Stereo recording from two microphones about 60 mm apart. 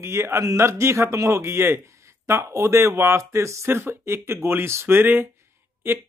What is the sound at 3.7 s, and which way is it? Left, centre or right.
Speech, right.